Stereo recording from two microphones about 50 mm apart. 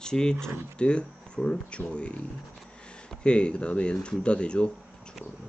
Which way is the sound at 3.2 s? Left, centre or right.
Left.